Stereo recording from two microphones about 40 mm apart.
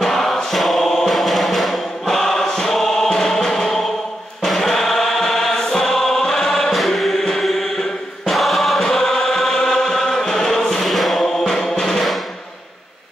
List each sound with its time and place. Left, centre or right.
0.0 s music: centre
8.3 s choir: centre
8.8 s chant: centre
9.4 s music: centre
10.9 s chant: centre
11.8 s music: centre